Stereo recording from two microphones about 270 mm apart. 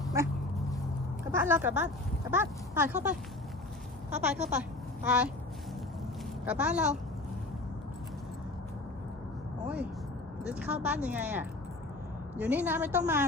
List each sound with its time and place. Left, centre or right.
1.3 s a woman's voice: centre
4.1 s a woman's voice: right
5.0 s speech: centre
6.4 s speech: centre
10.4 s speech: centre